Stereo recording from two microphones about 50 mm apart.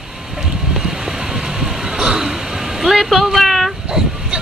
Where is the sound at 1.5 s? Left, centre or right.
Centre.